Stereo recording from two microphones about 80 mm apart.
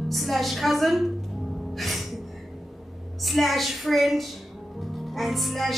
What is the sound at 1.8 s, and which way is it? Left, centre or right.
Gasp, centre.